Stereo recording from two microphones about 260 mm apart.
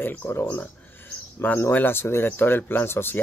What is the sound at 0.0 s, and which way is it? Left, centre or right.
Speech, centre.